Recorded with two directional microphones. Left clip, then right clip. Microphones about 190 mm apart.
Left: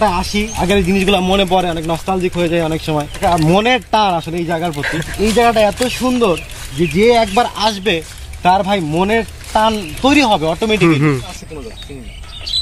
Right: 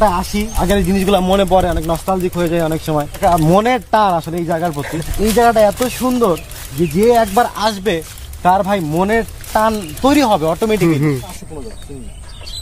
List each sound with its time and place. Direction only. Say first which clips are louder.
0.0 s speech: even; 20° right (ahead or behind)
10.9 s speech: left 2 dB; 5° right (ahead or behind)